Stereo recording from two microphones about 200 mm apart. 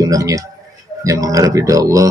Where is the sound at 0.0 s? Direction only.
15° right (ahead or behind).